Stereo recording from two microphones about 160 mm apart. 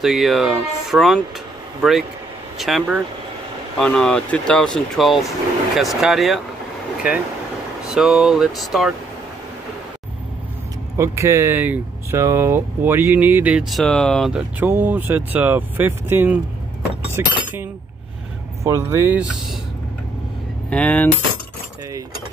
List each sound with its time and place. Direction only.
0.0 s speech: centre (ahead or behind)
11.0 s speech: 20° right (ahead or behind); by 14.4 s centre (ahead or behind)
14.6 s speech: 10° right (ahead or behind)
20.7 s a sound: 10° left (ahead or behind)